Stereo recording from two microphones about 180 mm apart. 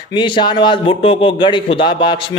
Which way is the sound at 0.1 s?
25° left (ahead or behind).